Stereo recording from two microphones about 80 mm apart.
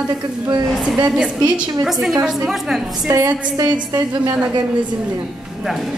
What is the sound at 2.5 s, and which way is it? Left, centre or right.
Speech, centre.